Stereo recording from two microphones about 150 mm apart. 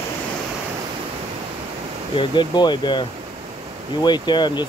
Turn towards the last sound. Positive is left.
turn(degrees=30)  # may be behind; listen again after turning